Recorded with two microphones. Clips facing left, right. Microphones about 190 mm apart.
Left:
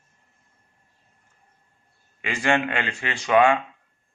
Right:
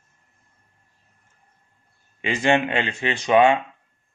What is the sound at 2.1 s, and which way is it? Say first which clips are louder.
Speech: right 3 dB; 20° right (ahead or behind).